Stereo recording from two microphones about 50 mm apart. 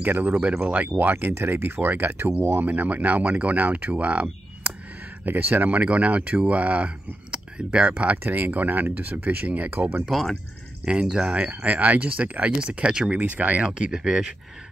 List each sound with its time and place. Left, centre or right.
0.0 s speech: right
0.9 s speech: right
2.6 s speech: right
7.2 s a sound: right
7.9 s speech: right
10.9 s speech: centre
13.1 s speech: right
13.7 s speech: centre